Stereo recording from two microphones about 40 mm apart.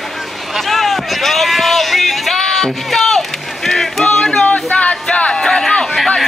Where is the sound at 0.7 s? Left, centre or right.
Centre.